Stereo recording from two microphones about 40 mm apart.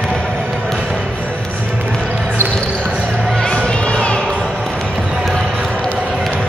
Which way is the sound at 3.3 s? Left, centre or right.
Left.